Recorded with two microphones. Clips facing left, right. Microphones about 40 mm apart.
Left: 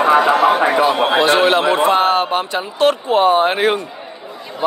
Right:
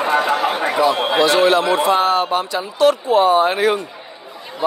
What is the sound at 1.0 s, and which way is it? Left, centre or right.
A man's voice, left.